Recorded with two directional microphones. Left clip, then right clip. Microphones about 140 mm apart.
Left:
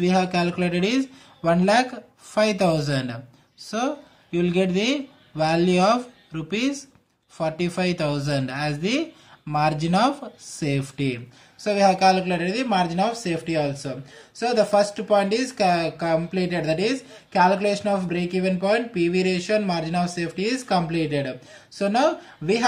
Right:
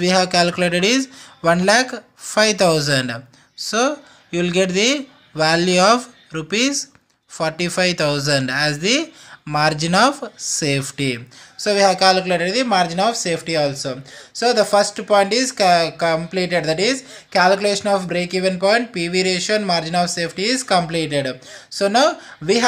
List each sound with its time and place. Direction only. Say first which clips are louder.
0.0 s speech: right 6 dB; 35° right (ahead or behind)